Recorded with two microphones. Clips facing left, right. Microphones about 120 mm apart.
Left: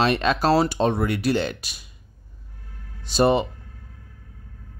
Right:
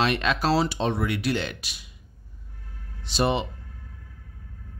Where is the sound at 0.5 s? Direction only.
50° left (ahead or behind).